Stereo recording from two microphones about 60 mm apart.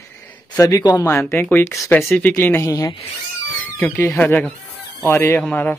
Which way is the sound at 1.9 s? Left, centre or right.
Left.